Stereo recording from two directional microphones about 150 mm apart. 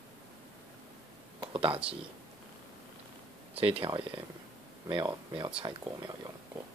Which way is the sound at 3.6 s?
40° right (ahead or behind).